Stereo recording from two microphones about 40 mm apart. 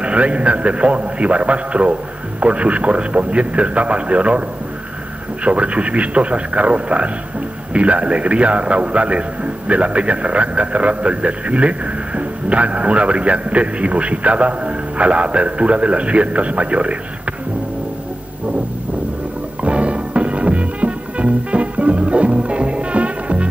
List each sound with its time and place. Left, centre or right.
0.0 s a man's voice: right
5.4 s a man's voice: right
19.6 s music: right